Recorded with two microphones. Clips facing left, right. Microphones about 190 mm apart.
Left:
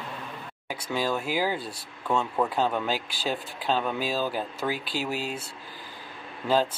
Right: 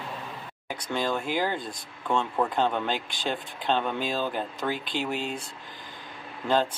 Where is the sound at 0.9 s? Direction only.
5° left (ahead or behind).